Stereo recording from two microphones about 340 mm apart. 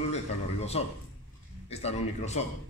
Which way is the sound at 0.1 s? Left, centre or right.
Centre.